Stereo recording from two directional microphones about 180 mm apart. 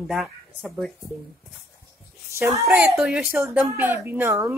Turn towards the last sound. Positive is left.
turn(degrees=-15)  # may be behind; listen again after turning